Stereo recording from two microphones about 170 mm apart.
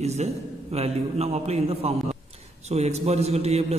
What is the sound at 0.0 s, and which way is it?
A man's voice, 40° right (ahead or behind).